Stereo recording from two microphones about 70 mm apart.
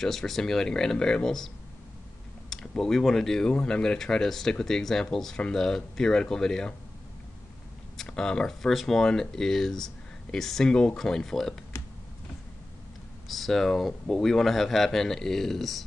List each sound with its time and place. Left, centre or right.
0.0 s speech: centre
2.5 s speech: centre
8.0 s speech: centre
11.7 s a sound: left
13.3 s speech: centre